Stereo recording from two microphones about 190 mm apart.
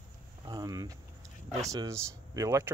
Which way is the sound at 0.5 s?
20° right (ahead or behind).